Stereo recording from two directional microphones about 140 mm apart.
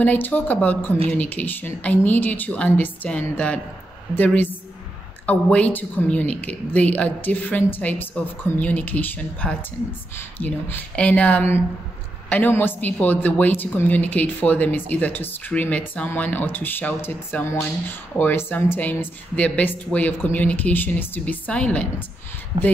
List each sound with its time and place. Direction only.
0.0 s a woman's voice: 10° left (ahead or behind)
22.5 s speech: 45° right (ahead or behind)